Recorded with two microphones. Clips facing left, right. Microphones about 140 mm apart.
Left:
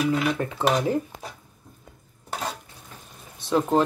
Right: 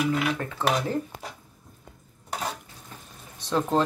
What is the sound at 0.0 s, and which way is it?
Speech, 20° left (ahead or behind).